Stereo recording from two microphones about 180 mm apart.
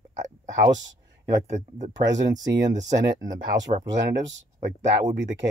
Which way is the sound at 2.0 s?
80° right.